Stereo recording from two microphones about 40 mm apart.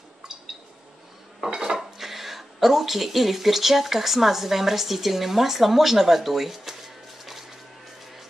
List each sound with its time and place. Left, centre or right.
1.5 s dishes: centre
1.8 s speech: centre